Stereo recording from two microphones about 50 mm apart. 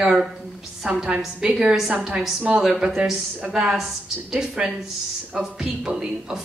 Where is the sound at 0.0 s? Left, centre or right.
Centre.